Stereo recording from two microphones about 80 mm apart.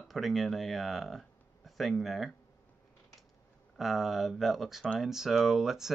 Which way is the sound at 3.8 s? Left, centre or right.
Centre.